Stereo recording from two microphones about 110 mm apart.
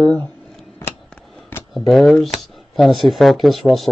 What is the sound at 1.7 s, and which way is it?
Speech, centre (ahead or behind).